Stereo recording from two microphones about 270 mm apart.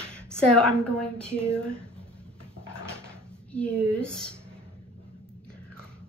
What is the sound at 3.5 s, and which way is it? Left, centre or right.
Speech, centre.